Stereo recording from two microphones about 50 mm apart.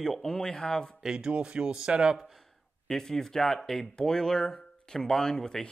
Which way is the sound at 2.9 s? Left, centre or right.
Centre.